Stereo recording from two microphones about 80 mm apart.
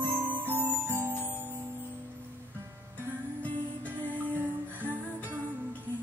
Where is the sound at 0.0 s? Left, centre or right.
Right.